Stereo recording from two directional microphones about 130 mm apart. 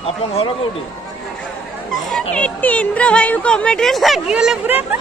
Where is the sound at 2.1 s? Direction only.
5° left (ahead or behind); by 4.9 s 15° right (ahead or behind).